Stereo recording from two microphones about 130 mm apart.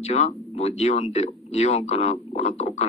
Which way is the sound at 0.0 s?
60° left (ahead or behind).